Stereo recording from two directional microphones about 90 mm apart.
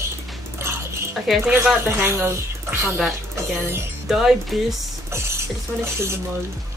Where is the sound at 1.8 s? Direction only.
25° right (ahead or behind).